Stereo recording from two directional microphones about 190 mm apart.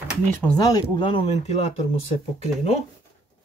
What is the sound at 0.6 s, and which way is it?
Speech, 25° left (ahead or behind).